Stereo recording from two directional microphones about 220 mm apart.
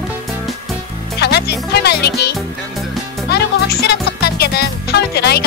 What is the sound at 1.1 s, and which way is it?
Music, 50° left (ahead or behind).